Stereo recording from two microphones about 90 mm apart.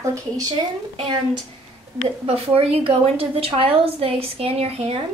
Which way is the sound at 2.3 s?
90° right.